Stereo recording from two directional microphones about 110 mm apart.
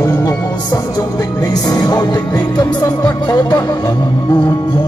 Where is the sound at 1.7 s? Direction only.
35° left (ahead or behind).